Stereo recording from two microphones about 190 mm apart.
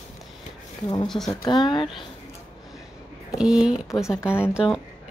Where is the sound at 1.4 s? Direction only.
25° left (ahead or behind).